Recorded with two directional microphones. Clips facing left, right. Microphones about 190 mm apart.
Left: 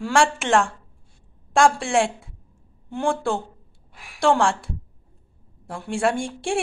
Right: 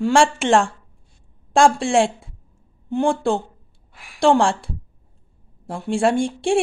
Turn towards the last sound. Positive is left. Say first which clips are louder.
# right 5 dB
turn(degrees=-20)  # may be behind; listen again after turning